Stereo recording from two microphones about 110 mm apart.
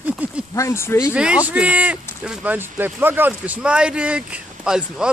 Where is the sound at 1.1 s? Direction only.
10° right (ahead or behind).